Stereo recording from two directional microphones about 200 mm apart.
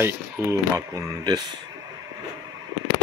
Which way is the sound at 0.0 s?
15° right (ahead or behind).